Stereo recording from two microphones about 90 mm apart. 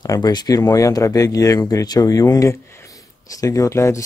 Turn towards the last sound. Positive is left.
turn(degrees=35)  # may be behind; listen again after turning